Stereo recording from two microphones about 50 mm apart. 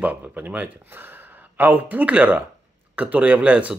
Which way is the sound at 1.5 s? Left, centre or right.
Right.